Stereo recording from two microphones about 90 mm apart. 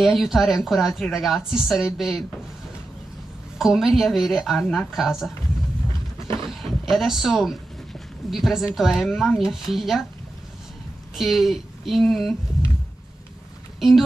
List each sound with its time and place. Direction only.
0.0 s speech: centre (ahead or behind)
3.5 s speech: 5° right (ahead or behind)
5.9 s a sound: 70° right (ahead or behind)
6.6 s speech: centre (ahead or behind)
11.1 s speech: centre (ahead or behind)
13.7 s speech: centre (ahead or behind)